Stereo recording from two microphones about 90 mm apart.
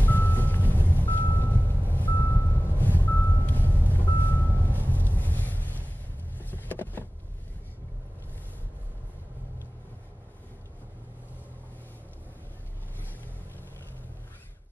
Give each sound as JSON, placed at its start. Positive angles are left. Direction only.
{"t": 0.0, "sound": "music", "side_deg": 20}
{"t": 6.3, "sound": "vehicle", "side_deg": 20}